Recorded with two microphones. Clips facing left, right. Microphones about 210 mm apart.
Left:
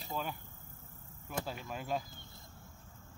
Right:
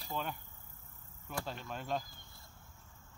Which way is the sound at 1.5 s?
5° left (ahead or behind).